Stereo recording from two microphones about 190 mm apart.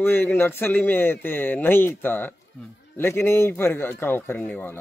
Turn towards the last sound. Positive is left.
turn(degrees=10)  # may be behind; listen again after turning